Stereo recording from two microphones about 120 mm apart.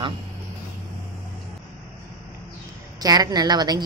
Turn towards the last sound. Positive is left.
turn(degrees=-35)  # may be behind; listen again after turning